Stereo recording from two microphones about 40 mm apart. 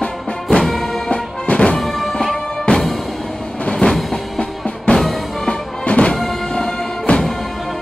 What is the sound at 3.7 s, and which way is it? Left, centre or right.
Music, centre.